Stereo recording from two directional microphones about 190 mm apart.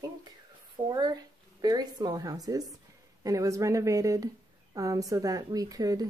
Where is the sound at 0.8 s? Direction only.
20° right (ahead or behind).